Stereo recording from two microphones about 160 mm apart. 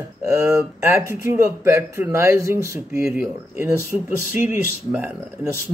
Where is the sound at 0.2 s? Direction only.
15° right (ahead or behind).